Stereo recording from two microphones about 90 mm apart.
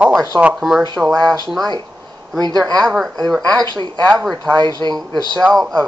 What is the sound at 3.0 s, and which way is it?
Speech, 5° left (ahead or behind).